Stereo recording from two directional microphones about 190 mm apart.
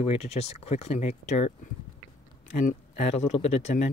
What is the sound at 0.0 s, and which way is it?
Speech, 35° left (ahead or behind).